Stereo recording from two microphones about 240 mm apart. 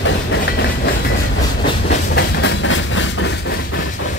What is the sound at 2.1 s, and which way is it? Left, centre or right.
Train, left.